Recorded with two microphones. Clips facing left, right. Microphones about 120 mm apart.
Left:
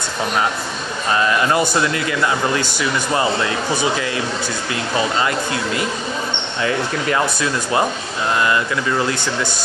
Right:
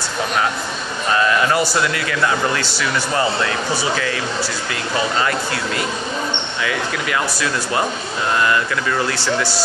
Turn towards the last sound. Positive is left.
turn(degrees=25)  # may be behind; listen again after turning